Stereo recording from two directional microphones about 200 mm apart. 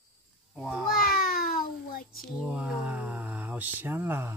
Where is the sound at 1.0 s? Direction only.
45° left (ahead or behind).